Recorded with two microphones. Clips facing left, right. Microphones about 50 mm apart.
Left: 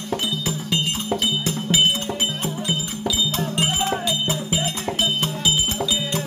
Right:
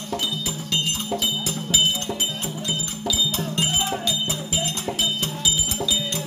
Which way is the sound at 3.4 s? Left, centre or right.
Left.